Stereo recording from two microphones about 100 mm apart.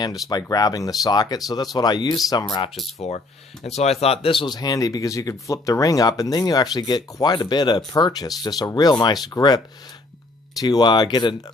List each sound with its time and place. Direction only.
0.0 s speech: 40° left (ahead or behind)
3.6 s speech: 90° left; by 9.6 s 40° left (ahead or behind)
10.6 s speech: 45° left (ahead or behind)